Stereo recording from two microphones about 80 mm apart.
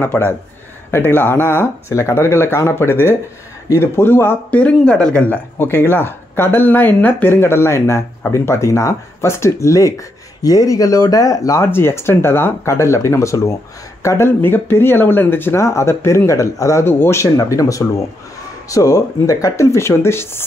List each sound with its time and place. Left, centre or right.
0.0 s speech: left
11.6 s speech: left
16.8 s speech: left
17.4 s speech: left